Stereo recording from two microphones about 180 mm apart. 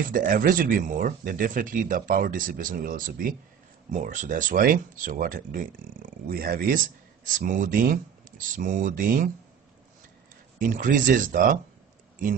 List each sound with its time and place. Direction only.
0.0 s speech: 50° right (ahead or behind)
10.6 s speech: 50° right (ahead or behind)